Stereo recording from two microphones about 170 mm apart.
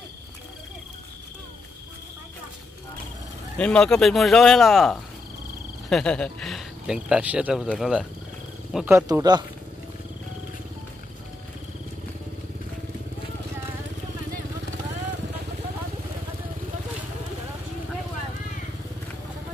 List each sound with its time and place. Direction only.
3.5 s speech: 5° left (ahead or behind); by 9.0 s 10° right (ahead or behind)
9.0 s speech: 20° right (ahead or behind)